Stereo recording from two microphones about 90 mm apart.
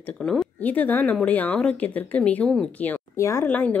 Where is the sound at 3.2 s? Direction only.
35° left (ahead or behind).